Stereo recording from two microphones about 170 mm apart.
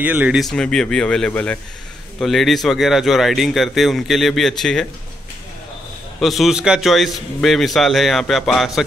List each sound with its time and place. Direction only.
0.0 s speech: 10° right (ahead or behind)
6.1 s speech: centre (ahead or behind)